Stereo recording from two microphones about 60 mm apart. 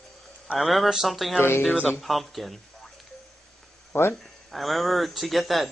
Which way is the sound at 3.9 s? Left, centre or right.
Left.